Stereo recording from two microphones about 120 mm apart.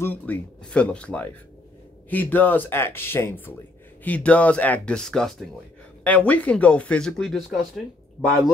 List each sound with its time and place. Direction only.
0.0 s speech: 15° left (ahead or behind); by 7.8 s centre (ahead or behind)